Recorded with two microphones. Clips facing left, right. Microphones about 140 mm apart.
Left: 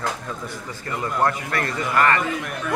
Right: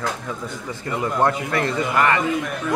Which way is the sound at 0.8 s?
15° right (ahead or behind).